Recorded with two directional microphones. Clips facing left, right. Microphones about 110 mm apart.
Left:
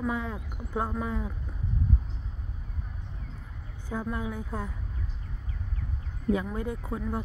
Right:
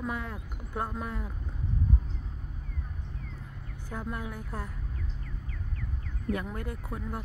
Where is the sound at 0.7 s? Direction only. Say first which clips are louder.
Left 3 dB; 15° left (ahead or behind).